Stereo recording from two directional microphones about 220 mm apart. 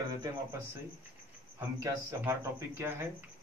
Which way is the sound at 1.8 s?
15° right (ahead or behind).